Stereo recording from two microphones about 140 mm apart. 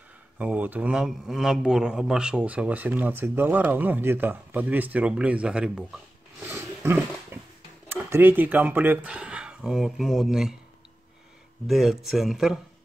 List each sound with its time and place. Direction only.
0.4 s a man's voice: 10° right (ahead or behind)
6.5 s dog: 15° right (ahead or behind)
7.9 s speech: 15° right (ahead or behind)
11.6 s speech: centre (ahead or behind)